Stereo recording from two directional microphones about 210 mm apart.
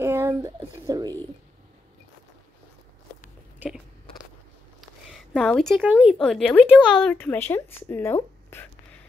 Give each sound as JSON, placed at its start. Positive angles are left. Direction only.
{"t": 0.0, "sound": "a sound", "side_deg": -10}
{"t": 0.7, "sound": "speech", "side_deg": -20}
{"t": 3.5, "sound": "biting", "side_deg": -5}
{"t": 5.1, "sound": "a woman's voice", "side_deg": 0}